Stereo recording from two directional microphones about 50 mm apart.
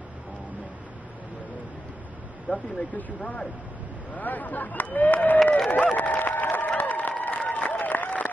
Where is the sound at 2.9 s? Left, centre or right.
Left.